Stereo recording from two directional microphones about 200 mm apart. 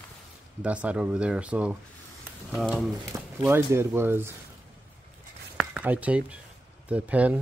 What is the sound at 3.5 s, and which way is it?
Speech, 10° right (ahead or behind).